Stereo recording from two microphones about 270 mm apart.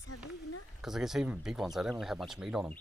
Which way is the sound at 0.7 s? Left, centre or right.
Centre.